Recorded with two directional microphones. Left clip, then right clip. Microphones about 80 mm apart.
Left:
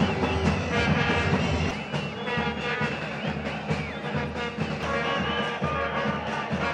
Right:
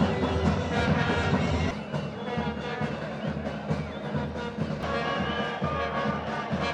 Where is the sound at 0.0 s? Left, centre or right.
Centre.